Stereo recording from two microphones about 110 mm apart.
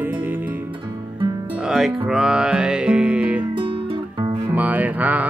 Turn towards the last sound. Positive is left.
turn(degrees=-15)  # may be behind; listen again after turning